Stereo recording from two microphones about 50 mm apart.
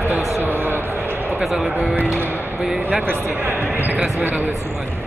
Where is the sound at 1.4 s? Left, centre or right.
Centre.